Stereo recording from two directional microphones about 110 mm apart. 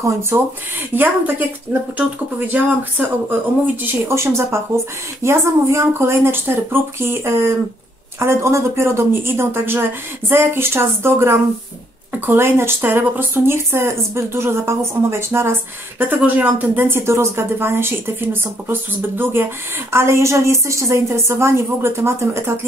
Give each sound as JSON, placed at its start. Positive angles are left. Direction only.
{"t": 0.3, "sound": "speech", "side_deg": -25}